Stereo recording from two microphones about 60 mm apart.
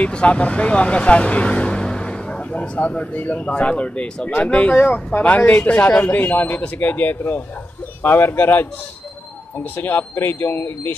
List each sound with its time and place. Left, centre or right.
0.0 s speech: centre
9.8 s speech: left